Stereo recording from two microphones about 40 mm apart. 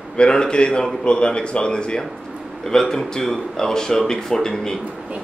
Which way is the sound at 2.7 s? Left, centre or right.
Centre.